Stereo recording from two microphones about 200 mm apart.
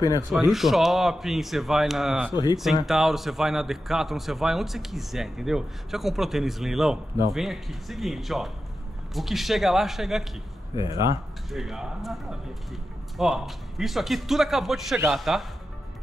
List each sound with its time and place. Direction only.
0.5 s a man's voice: centre (ahead or behind)
2.3 s speech: 20° left (ahead or behind)
2.6 s a man's voice: centre (ahead or behind)
10.9 s speech: 15° right (ahead or behind)
11.5 s a man's voice: centre (ahead or behind)